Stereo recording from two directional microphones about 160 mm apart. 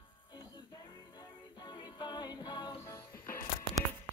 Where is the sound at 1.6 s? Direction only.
25° left (ahead or behind).